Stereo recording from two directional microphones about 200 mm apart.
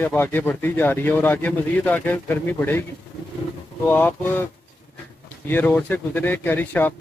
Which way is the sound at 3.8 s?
10° left (ahead or behind).